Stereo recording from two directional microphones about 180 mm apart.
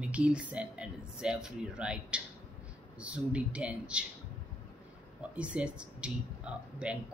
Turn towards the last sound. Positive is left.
turn(degrees=-5)  # may be behind; listen again after turning